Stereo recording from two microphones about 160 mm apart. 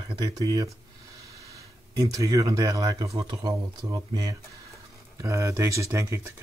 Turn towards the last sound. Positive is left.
turn(degrees=-15)  # may be behind; listen again after turning